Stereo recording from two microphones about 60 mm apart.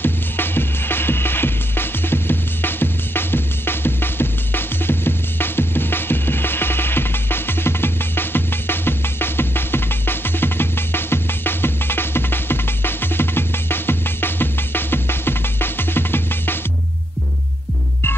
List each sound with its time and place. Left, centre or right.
0.0 s music: left